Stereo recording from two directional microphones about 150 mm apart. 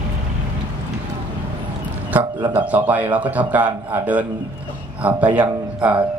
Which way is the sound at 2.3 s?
30° right (ahead or behind).